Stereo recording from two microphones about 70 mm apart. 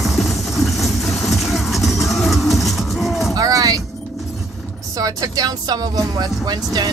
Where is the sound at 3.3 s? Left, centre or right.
Right.